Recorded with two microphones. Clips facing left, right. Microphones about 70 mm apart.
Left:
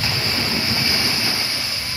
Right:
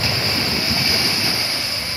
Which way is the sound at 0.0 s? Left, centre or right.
Centre.